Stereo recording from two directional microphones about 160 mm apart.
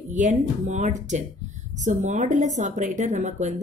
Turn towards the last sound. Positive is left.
turn(degrees=-50)  # may be behind; listen again after turning